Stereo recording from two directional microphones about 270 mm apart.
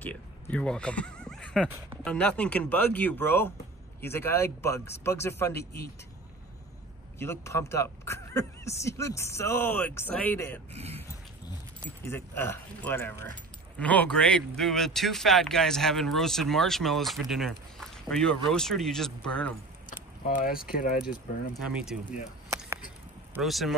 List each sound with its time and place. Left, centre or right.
0.0 s speech: centre
5.5 s speech: left
7.2 s speech: centre
10.7 s speech: right
11.8 s speech: centre
19.9 s keys jangling: left
20.7 s speech: left
21.6 s speech: centre
23.3 s speech: centre